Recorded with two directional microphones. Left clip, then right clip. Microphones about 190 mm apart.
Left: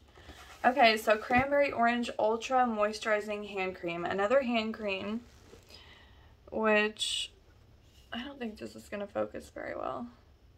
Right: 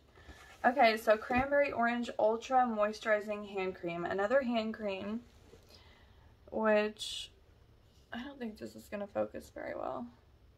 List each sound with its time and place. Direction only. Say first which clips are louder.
0.6 s speech: left 3 dB; 5° left (ahead or behind)
6.5 s speech: left 2 dB; 5° left (ahead or behind)